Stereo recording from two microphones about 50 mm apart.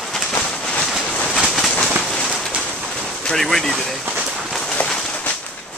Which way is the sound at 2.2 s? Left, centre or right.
Centre.